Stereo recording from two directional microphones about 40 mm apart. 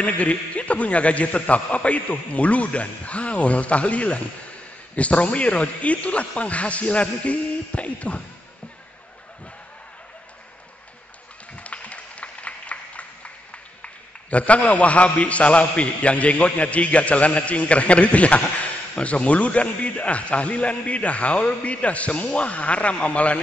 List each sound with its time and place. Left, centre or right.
0.0 s a man's voice: left
11.5 s a sound: left
13.8 s a man's voice: left